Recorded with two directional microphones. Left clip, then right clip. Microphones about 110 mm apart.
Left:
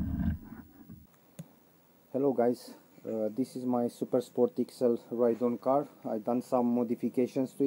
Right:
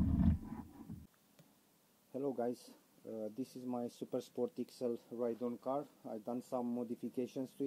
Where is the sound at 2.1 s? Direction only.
20° right (ahead or behind).